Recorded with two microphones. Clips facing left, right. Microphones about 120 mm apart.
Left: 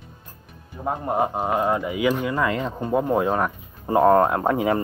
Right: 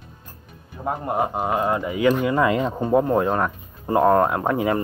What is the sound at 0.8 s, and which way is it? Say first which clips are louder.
Speech: even; 25° left (ahead or behind).